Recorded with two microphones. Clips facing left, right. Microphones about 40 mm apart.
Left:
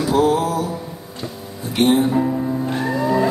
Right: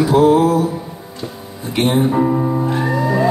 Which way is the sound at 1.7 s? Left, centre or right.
Centre.